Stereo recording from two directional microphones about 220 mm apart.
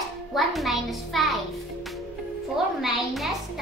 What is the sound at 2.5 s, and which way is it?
Speech, centre (ahead or behind).